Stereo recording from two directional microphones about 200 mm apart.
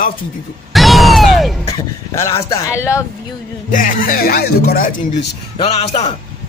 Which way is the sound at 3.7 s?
40° left (ahead or behind).